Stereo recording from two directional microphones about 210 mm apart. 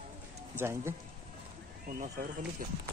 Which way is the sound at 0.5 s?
10° right (ahead or behind).